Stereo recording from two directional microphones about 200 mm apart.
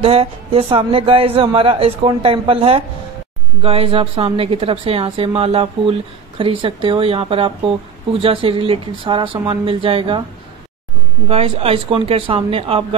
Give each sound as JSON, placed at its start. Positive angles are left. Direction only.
{"t": 0.0, "sound": "a woman's voice", "side_deg": -30}
{"t": 11.2, "sound": "a woman's voice", "side_deg": -30}